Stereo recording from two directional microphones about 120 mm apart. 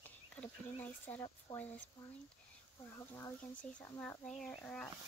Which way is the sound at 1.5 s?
35° left (ahead or behind).